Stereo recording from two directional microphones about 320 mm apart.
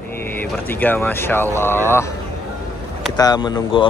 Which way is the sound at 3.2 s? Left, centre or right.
Centre.